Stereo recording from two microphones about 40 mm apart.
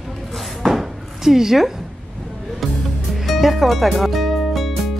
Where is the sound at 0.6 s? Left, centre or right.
Centre.